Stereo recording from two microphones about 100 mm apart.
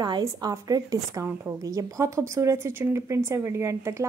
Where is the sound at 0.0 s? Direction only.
40° right (ahead or behind).